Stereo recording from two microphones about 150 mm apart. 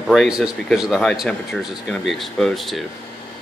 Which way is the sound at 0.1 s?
Centre (ahead or behind).